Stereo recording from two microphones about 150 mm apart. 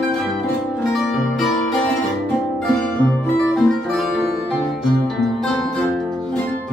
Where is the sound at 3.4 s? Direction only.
5° left (ahead or behind).